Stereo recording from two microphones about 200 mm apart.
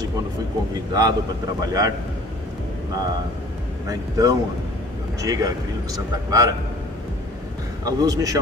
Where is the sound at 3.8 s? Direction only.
15° right (ahead or behind).